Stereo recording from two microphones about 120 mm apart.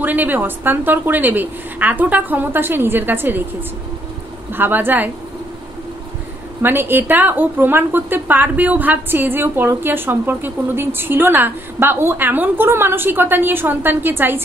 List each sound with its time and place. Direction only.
0.0 s a woman's voice: 15° right (ahead or behind)
4.5 s a woman's voice: 15° right (ahead or behind)
6.6 s a woman's voice: 20° right (ahead or behind)